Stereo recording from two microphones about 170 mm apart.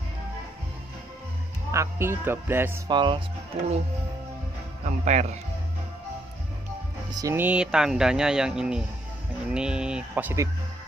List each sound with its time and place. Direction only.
1.7 s speech: 15° right (ahead or behind)
2.9 s speech: 30° right (ahead or behind)
4.8 s speech: 45° right (ahead or behind)
7.1 s speech: 20° right (ahead or behind)